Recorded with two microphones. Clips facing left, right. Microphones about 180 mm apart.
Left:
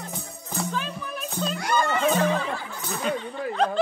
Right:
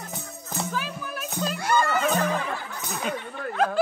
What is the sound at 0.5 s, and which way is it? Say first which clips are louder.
Music: left 1 dB; 5° right (ahead or behind).